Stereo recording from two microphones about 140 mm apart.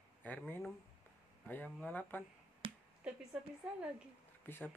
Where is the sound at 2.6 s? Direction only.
40° right (ahead or behind).